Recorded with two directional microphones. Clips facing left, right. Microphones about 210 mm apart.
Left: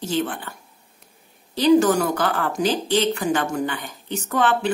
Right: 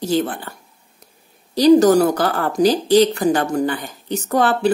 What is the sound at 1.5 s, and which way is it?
Speech, 40° right (ahead or behind).